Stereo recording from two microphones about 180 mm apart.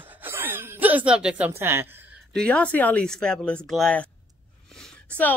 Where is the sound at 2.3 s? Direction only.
5° left (ahead or behind).